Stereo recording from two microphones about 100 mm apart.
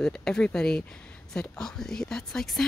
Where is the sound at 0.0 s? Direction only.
5° left (ahead or behind).